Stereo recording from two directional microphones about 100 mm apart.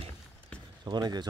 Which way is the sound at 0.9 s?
45° right (ahead or behind).